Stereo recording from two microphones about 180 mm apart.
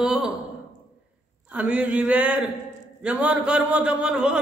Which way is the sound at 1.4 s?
5° right (ahead or behind).